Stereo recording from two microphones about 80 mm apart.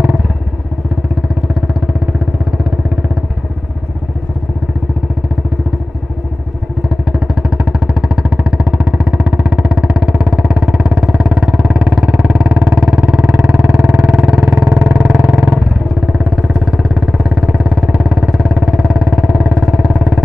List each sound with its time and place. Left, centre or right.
1.5 s vehicle: centre
7.1 s vehicle: centre
12.5 s a sound: centre
15.1 s vehicle: right